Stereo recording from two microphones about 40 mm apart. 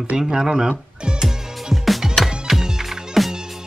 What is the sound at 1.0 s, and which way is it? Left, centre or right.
Music, centre.